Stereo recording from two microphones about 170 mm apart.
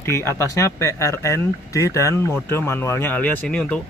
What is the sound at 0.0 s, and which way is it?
Speech, 15° left (ahead or behind).